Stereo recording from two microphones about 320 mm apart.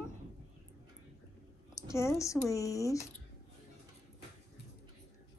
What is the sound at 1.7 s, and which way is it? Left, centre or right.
A woman's voice, centre.